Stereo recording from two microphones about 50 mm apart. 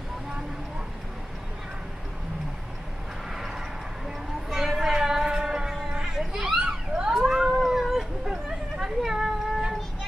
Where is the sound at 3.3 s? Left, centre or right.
Centre.